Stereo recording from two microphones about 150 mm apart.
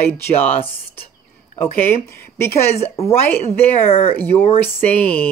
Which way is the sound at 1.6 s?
15° left (ahead or behind).